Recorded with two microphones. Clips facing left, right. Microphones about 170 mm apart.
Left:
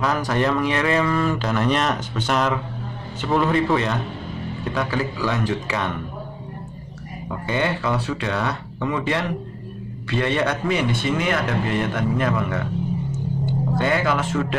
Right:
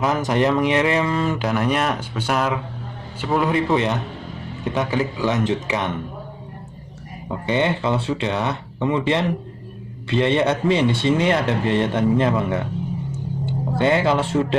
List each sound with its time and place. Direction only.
0.0 s speech: 20° right (ahead or behind)
7.2 s speech: 25° right (ahead or behind)